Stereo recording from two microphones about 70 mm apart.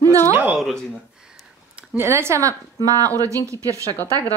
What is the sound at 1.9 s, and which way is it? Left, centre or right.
Speech, right.